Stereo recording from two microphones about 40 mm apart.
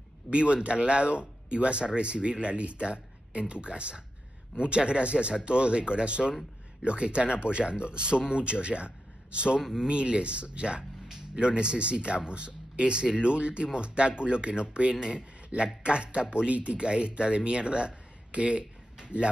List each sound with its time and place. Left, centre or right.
0.3 s speech: right
9.6 s speech: centre
9.8 s speech: right